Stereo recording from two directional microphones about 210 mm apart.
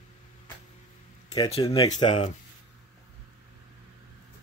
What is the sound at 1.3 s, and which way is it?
Speech, 25° left (ahead or behind).